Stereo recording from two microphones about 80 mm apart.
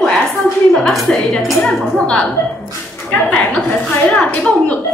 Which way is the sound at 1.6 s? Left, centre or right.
Centre.